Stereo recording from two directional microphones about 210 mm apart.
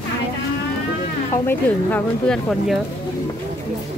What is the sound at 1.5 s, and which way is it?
A woman's voice, 5° left (ahead or behind).